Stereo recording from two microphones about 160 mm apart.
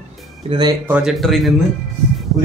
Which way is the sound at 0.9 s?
Centre (ahead or behind).